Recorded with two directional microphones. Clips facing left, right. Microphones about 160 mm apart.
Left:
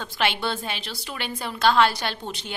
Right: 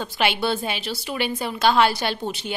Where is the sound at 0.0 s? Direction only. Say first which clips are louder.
Right 3 dB; 10° right (ahead or behind).